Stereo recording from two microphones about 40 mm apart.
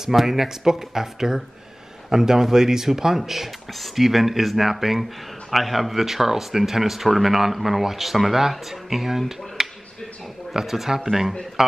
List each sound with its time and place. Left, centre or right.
0.1 s speech: centre
9.6 s a sound: centre
10.5 s speech: centre